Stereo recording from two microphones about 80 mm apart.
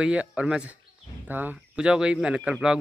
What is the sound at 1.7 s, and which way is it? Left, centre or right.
Speech, centre.